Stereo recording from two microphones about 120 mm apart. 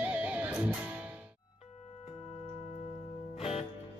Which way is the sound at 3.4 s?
55° left (ahead or behind).